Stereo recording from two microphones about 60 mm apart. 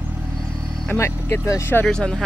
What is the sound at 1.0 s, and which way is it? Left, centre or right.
Speech, left.